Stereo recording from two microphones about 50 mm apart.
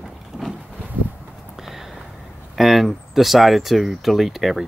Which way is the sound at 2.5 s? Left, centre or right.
Centre.